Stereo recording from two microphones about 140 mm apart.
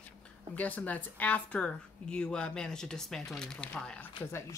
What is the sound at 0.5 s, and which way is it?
Speech, 10° left (ahead or behind).